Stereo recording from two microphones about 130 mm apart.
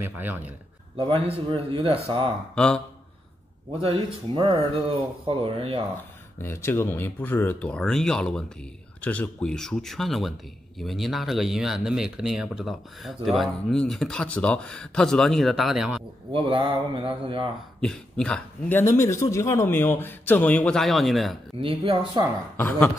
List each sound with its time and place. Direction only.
0.0 s speech: 15° right (ahead or behind)
0.9 s speech: 45° right (ahead or behind)
2.5 s a man's voice: 5° left (ahead or behind)
3.8 s speech: 45° right (ahead or behind)
6.4 s a man's voice: 20° left (ahead or behind); by 16.0 s 5° right (ahead or behind)
16.3 s speech: 45° right (ahead or behind)
17.7 s a man's voice: 5° left (ahead or behind)
21.5 s speech: 45° right (ahead or behind)
22.6 s a man's voice: 15° left (ahead or behind)